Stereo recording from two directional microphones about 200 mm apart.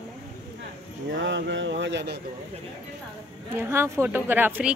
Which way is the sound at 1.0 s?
65° right (ahead or behind).